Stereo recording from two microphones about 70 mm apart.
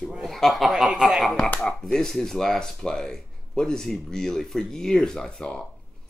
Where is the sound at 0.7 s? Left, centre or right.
Centre.